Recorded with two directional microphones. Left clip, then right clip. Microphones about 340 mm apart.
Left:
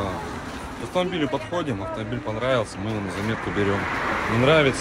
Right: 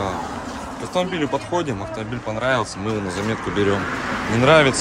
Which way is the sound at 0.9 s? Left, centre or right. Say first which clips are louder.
Right 2 dB; centre.